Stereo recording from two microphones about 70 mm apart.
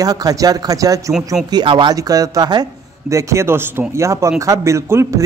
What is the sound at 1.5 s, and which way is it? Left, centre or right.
Speech, right.